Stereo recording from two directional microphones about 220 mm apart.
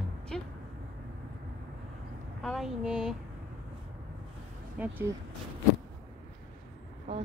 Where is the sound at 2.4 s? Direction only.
Centre (ahead or behind).